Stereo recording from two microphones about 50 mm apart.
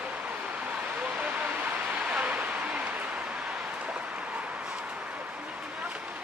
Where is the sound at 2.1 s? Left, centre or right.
Right.